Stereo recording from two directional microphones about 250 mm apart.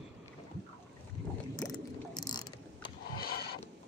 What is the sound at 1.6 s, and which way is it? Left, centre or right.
Mechanisms, centre.